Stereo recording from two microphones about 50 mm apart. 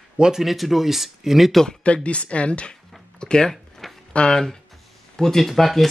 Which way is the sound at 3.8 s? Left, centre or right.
Centre.